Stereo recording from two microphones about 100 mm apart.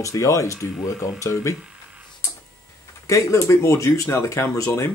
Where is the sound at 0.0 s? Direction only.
35° left (ahead or behind).